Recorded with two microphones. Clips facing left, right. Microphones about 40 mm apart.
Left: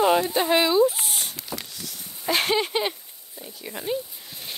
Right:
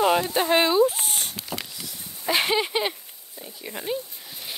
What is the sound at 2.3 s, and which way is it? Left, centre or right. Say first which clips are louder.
Speech: even; centre.